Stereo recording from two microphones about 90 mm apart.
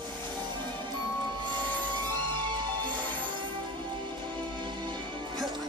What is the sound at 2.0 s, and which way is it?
Music, 20° left (ahead or behind).